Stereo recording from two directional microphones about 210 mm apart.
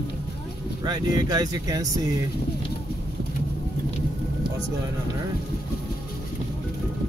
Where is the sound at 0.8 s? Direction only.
20° right (ahead or behind).